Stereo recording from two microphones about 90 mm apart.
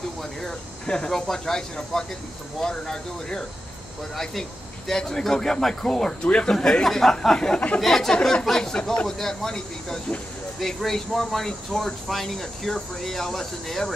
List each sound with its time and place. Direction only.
0.2 s speech: 5° left (ahead or behind)